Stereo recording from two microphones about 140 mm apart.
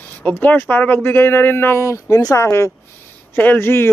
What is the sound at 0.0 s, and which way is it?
Speech, 10° left (ahead or behind).